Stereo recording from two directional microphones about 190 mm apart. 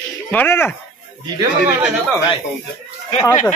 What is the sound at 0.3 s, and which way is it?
Speech, 10° left (ahead or behind).